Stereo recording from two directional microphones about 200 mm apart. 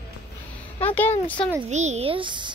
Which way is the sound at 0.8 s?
10° left (ahead or behind).